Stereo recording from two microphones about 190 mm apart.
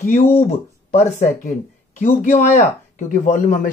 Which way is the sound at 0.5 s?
35° left (ahead or behind).